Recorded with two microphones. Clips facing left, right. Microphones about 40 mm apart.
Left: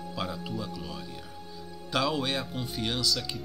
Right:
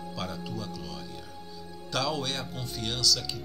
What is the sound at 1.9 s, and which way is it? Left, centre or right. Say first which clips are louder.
Speech: left 2 dB; centre.